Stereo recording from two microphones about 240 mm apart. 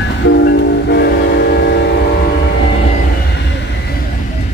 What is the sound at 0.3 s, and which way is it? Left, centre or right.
Train, left.